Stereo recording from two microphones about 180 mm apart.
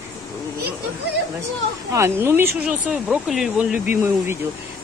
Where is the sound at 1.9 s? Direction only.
15° right (ahead or behind).